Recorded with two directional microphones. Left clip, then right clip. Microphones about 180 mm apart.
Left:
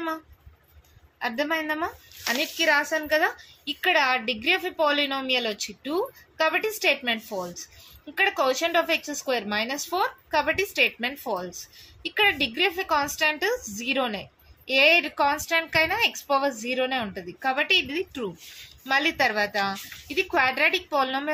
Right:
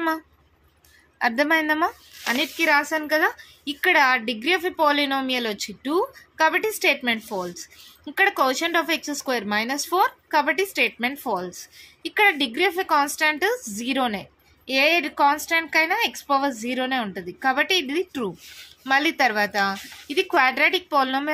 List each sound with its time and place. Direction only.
1.2 s a woman's voice: 45° right (ahead or behind)
2.3 s speech: 35° right (ahead or behind)